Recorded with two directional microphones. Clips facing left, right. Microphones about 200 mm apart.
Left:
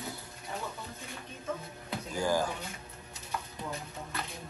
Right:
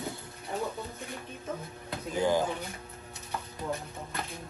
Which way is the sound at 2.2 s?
20° right (ahead or behind).